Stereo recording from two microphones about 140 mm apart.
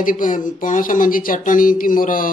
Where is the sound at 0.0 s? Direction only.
70° left (ahead or behind).